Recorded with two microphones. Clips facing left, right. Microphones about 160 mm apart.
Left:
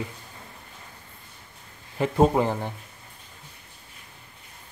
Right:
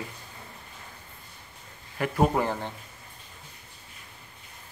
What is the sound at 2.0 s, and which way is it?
Speech, 20° left (ahead or behind).